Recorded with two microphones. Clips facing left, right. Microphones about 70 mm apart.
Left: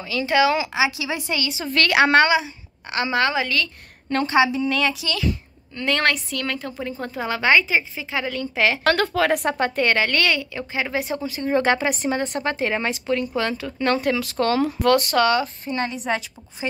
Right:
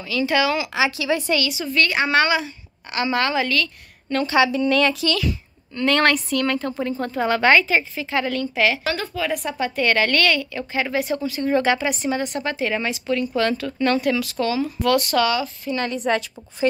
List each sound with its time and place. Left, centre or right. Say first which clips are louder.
0.1 s a woman's voice: left 1 dB; left
1.7 s speech: left 4 dB; left
2.9 s a woman's voice: even; left
8.4 s a woman's voice: right 1 dB; left
8.8 s speech: left 6 dB; left
9.8 s a woman's voice: right 5 dB; left
11.6 s speech: even; left; by 13.8 s centre
13.8 s speech: right 1 dB; left
16.0 s a woman's voice: right 3 dB; centre